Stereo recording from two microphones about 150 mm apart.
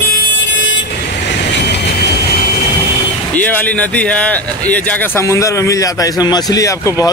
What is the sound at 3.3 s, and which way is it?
Speech, 10° left (ahead or behind).